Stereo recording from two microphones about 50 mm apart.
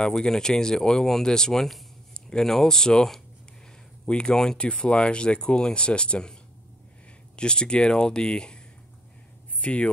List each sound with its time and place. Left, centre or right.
0.0 s speech: centre
7.3 s speech: centre
9.6 s speech: left